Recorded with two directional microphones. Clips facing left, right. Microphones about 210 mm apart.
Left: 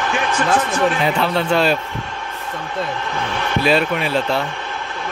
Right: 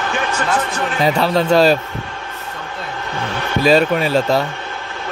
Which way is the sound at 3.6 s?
40° right (ahead or behind).